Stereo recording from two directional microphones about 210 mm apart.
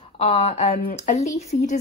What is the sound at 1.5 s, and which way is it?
Speech, 45° left (ahead or behind).